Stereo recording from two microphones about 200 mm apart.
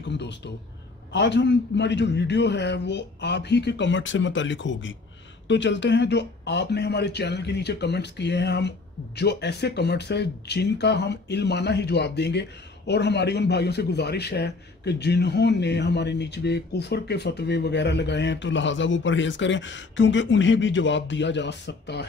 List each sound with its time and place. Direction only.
0.1 s a man's voice: 60° left (ahead or behind)